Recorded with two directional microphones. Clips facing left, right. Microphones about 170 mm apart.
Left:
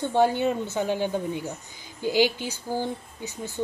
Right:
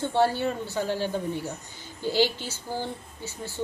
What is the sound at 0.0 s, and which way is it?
A woman's voice, 15° left (ahead or behind).